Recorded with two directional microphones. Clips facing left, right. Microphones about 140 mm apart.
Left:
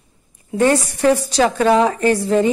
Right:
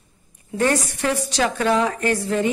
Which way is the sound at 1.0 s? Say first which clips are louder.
Left 9 dB; 35° left (ahead or behind).